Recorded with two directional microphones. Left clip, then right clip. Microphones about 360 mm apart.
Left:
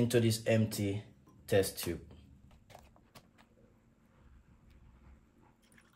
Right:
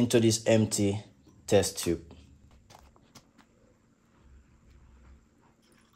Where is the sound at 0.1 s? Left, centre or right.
Centre.